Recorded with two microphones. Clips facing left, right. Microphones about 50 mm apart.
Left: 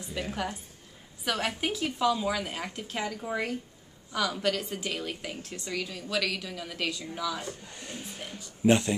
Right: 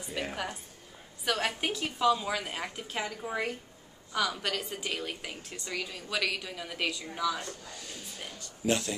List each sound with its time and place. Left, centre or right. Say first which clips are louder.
0.3 s speech: left 3 dB; centre
7.6 s speech: left 3 dB; left